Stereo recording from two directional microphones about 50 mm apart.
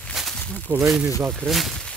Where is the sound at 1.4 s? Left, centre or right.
Centre.